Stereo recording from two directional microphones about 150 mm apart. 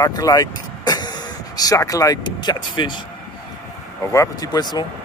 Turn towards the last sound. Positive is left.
turn(degrees=30)  # may be behind; listen again after turning